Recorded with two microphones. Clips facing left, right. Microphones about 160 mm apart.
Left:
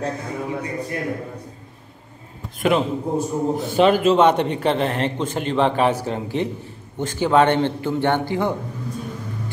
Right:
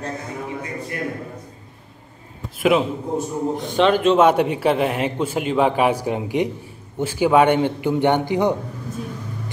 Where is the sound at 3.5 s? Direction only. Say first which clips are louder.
Left 1 dB; 5° left (ahead or behind).